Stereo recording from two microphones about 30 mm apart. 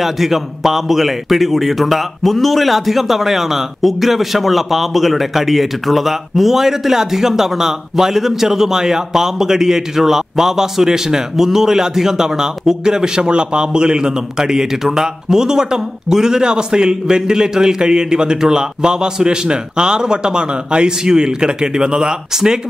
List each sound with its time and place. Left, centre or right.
0.0 s a man's voice: centre